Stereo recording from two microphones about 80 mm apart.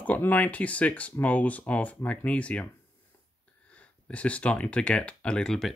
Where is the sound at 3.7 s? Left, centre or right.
Centre.